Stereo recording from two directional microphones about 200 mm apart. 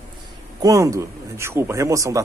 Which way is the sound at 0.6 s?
15° right (ahead or behind).